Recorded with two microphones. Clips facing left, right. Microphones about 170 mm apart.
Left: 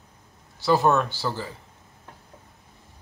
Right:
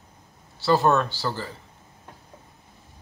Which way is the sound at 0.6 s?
10° left (ahead or behind).